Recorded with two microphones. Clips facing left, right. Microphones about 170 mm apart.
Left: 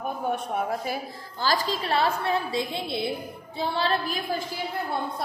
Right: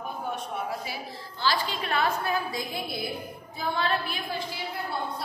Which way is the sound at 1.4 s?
40° left (ahead or behind).